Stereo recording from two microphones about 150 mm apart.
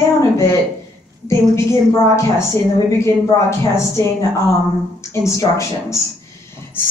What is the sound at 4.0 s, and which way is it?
A woman's voice, 20° left (ahead or behind).